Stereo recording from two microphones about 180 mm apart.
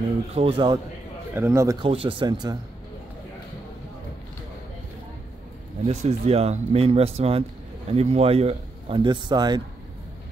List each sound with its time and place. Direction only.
0.3 s speech: 30° right (ahead or behind)
1.3 s speech: 15° right (ahead or behind)
1.8 s speech: 30° right (ahead or behind)
5.9 s speech: 35° right (ahead or behind)